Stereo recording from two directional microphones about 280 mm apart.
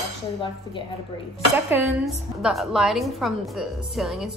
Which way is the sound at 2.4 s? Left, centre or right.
Centre.